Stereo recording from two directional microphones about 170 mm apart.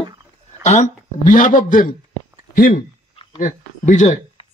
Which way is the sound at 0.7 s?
45° left (ahead or behind).